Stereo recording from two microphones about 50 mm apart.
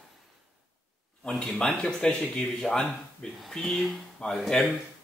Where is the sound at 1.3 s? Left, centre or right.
Centre.